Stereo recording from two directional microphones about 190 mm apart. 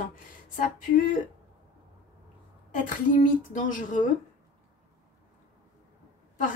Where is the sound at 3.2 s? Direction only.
40° left (ahead or behind).